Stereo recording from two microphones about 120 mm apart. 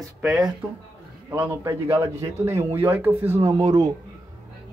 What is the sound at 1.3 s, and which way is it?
A man's voice, 20° right (ahead or behind).